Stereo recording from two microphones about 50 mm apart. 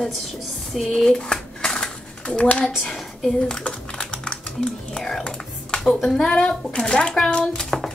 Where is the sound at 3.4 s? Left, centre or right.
Centre.